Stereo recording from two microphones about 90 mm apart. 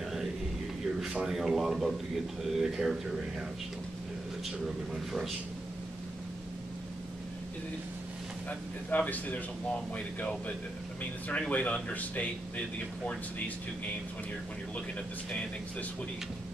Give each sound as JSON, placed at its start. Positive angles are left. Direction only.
{"t": 1.0, "sound": "speech", "side_deg": -5}
{"t": 8.5, "sound": "speech", "side_deg": 15}